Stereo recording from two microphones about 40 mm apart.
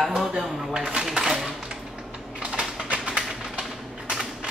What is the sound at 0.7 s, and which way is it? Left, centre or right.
Speech, right.